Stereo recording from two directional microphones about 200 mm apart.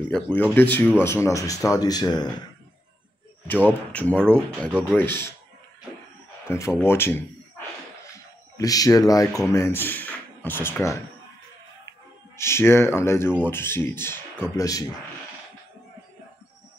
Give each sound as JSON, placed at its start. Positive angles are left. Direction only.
{"t": 0.1, "sound": "speech", "side_deg": 10}
{"t": 3.9, "sound": "speech", "side_deg": 5}
{"t": 6.4, "sound": "speech", "side_deg": 15}
{"t": 8.5, "sound": "speech", "side_deg": 15}
{"t": 12.4, "sound": "speech", "side_deg": 15}